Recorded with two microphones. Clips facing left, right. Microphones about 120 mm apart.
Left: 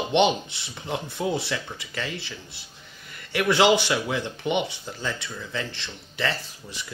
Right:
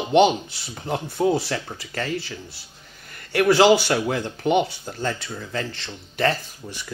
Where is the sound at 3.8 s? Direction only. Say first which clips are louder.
Right 3 dB; 45° right (ahead or behind).